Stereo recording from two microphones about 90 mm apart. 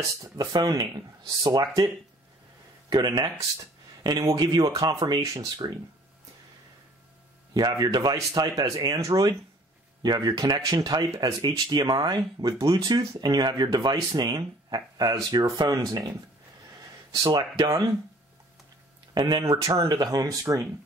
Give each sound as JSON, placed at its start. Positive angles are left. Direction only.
{"t": 0.2, "sound": "speech", "side_deg": -50}
{"t": 2.9, "sound": "speech", "side_deg": -50}
{"t": 4.4, "sound": "speech", "side_deg": -50}
{"t": 4.9, "sound": "speech", "side_deg": -55}
{"t": 5.2, "sound": "speech", "side_deg": -40}
{"t": 7.5, "sound": "speech", "side_deg": -50}
{"t": 8.2, "sound": "speech", "side_deg": -40}
{"t": 11.2, "sound": "speech", "side_deg": -40}
{"t": 11.6, "sound": "speech", "side_deg": -50}
{"t": 17.2, "sound": "speech", "side_deg": -55}
{"t": 17.6, "sound": "speech", "side_deg": -40}
{"t": 19.1, "sound": "speech", "side_deg": -50}
{"t": 19.4, "sound": "speech", "side_deg": -35}